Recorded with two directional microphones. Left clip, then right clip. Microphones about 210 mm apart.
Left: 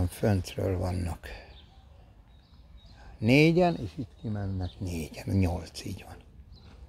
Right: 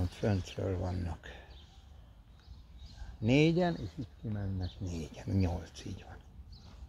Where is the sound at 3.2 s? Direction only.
30° left (ahead or behind).